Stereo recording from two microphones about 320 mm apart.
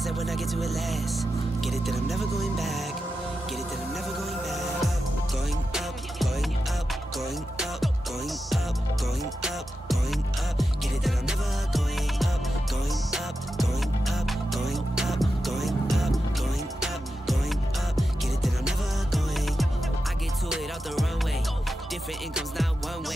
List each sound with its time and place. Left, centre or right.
0.0 s speech: centre
4.5 s music: centre
9.2 s music: centre
22.3 s music: centre